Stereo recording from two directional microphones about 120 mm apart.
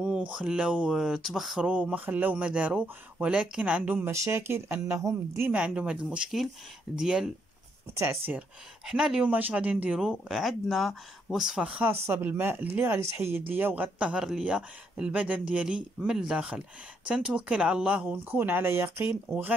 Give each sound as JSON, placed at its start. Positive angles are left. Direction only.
{"t": 0.0, "sound": "speech", "side_deg": -5}
{"t": 5.5, "sound": "speech", "side_deg": -10}
{"t": 8.3, "sound": "speech", "side_deg": -5}
{"t": 11.8, "sound": "speech", "side_deg": -20}